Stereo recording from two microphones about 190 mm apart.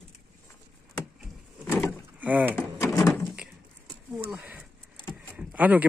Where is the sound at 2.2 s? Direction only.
10° right (ahead or behind).